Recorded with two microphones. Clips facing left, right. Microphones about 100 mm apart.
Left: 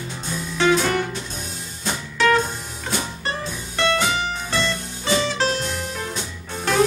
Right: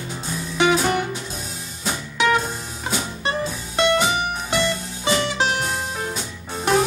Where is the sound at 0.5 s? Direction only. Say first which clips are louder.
Even; 15° right (ahead or behind).